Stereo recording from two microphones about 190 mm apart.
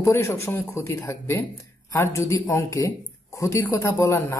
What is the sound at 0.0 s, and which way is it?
Speech, 15° left (ahead or behind).